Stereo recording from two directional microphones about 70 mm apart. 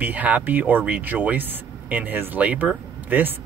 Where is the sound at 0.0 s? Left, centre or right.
Right.